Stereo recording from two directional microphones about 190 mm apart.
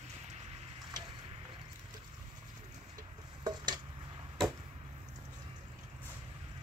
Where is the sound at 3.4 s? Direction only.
25° right (ahead or behind).